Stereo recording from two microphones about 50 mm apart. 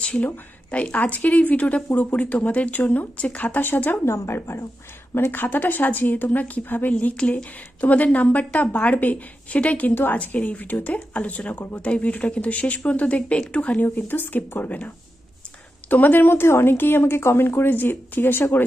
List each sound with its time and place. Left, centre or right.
0.0 s a woman's voice: left
3.6 s a woman's voice: left
4.0 s speech: left
5.1 s a woman's voice: left
6.9 s a woman's voice: left
13.8 s a woman's voice: left
15.9 s speech: left